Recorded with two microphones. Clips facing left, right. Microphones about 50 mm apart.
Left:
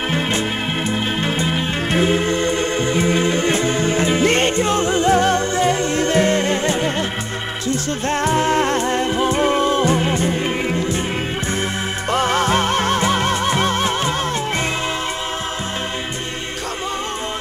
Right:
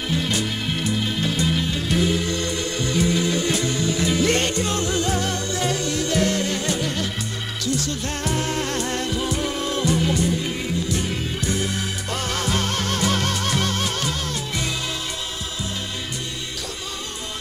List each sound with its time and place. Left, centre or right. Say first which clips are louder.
0.1 s music: left 1 dB; left
12.1 s music: left 9 dB; left